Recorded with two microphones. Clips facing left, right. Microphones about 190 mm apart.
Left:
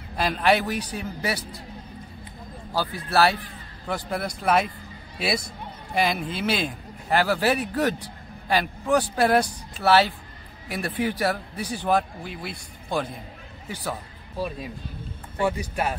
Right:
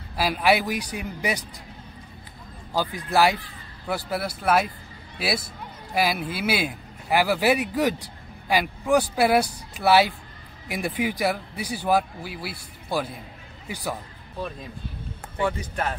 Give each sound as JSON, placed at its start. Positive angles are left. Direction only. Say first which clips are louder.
{"t": 0.1, "sound": "a man's voice", "louder": "even", "side_deg": -5}
{"t": 2.7, "sound": "a man's voice", "louder": "right 1 dB", "side_deg": -15}
{"t": 15.4, "sound": "speech", "louder": "left 1 dB", "side_deg": 10}